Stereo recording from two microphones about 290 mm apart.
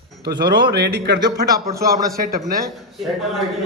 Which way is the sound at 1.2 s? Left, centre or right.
Centre.